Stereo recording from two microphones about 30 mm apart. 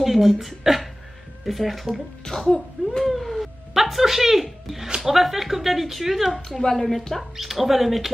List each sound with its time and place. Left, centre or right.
0.0 s speech: centre
2.4 s throat clearing: left
3.1 s a sound: centre
5.0 s speech: centre
6.6 s a woman's voice: centre
7.2 s speech: centre